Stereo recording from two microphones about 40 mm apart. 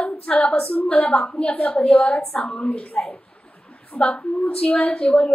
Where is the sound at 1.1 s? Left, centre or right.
Left.